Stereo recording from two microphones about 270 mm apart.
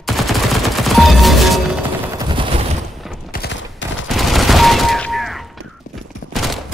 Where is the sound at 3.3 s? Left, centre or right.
Left.